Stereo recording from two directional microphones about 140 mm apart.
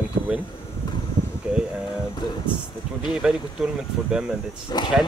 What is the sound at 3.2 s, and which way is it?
Speech, 5° right (ahead or behind).